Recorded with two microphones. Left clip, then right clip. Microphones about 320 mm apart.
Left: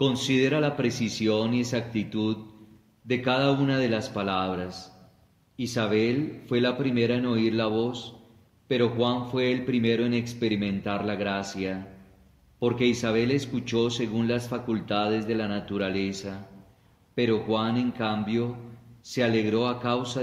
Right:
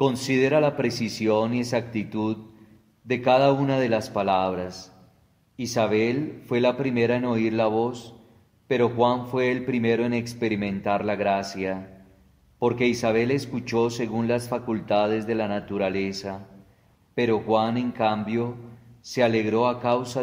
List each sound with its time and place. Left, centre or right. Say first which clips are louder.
0.0 s speech: right 2 dB; centre
3.1 s a man's voice: right 5 dB; centre